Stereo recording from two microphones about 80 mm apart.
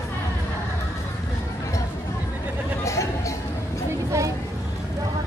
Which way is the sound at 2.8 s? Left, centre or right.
Left.